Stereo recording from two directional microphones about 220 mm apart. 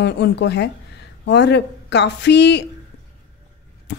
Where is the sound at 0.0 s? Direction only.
50° left (ahead or behind).